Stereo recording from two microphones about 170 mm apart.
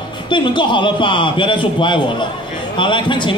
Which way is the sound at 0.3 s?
30° left (ahead or behind).